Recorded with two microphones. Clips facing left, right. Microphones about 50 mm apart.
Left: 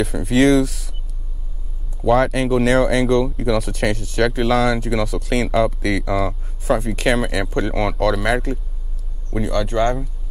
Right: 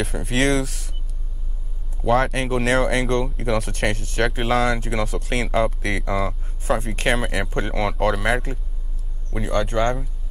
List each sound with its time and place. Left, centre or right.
0.0 s speech: centre
2.0 s speech: centre
4.4 s speech: centre
4.6 s speech: centre
6.2 s speech: centre
9.6 s speech: centre